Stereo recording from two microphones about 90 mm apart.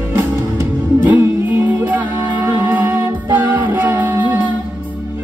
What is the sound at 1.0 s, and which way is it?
Music, 20° right (ahead or behind).